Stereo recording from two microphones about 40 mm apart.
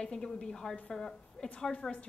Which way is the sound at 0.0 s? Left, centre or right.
Left.